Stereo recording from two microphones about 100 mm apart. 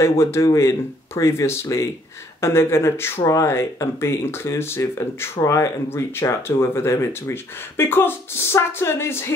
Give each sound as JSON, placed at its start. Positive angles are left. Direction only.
{"t": 0.0, "sound": "speech", "side_deg": 25}